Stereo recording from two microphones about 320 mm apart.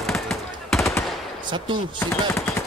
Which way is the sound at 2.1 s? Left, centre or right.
Centre.